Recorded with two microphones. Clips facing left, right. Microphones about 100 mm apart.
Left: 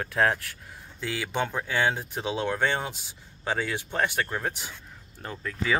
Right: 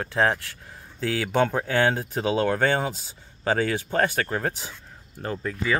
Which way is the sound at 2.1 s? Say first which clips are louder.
Right 6 dB; 40° right (ahead or behind).